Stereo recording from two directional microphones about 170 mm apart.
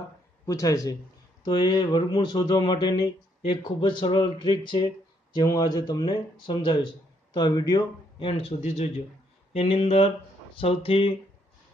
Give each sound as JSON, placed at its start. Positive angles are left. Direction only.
{"t": 0.5, "sound": "speech", "side_deg": 20}